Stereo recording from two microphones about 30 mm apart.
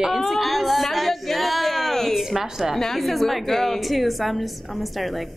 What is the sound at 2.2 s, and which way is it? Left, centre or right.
Speech, centre.